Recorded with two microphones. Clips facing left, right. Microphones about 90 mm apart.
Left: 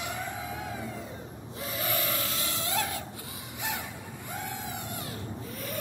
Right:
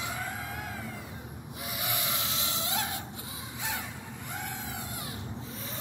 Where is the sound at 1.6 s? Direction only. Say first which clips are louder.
Left 4 dB; 15° right (ahead or behind).